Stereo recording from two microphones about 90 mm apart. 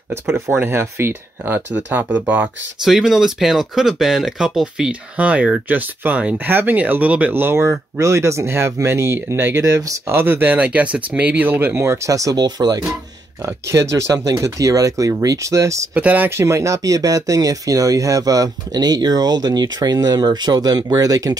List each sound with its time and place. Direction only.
0.3 s speech: 30° right (ahead or behind)
2.8 s speech: 5° right (ahead or behind); by 12.8 s 50° right (ahead or behind)
13.5 s speech: 35° right (ahead or behind)
15.9 s speech: 15° right (ahead or behind); by 21.4 s 40° right (ahead or behind)